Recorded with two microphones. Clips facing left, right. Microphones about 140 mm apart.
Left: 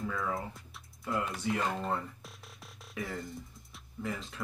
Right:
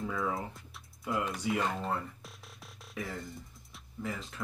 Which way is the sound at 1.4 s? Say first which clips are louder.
Even; 5° right (ahead or behind).